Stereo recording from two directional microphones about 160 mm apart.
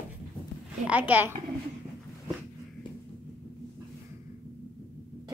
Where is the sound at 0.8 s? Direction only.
10° right (ahead or behind).